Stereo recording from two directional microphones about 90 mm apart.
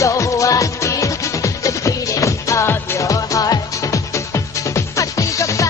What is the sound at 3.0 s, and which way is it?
Music, 40° left (ahead or behind).